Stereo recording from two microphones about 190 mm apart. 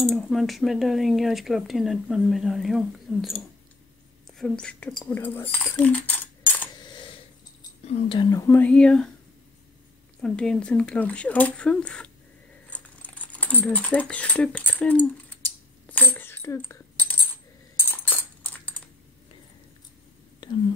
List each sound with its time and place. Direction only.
0.0 s speech: centre (ahead or behind)
7.8 s speech: 35° left (ahead or behind)
8.2 s speech: 20° left (ahead or behind)
10.2 s speech: 5° left (ahead or behind)
15.9 s coin: 10° left (ahead or behind)
20.4 s whispering: 25° left (ahead or behind)